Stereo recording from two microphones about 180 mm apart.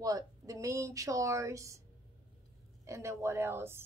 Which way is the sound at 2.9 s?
15° right (ahead or behind).